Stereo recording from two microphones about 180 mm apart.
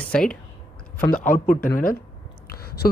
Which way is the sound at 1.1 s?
50° left (ahead or behind).